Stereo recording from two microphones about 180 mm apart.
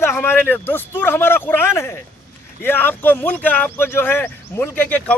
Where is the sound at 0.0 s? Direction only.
10° left (ahead or behind).